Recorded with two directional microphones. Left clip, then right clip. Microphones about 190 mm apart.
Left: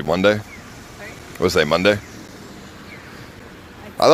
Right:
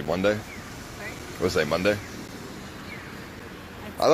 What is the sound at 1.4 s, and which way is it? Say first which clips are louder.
Speech: left 8 dB; 50° left (ahead or behind).